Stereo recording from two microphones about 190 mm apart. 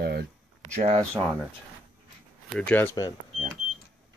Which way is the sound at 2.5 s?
5° left (ahead or behind).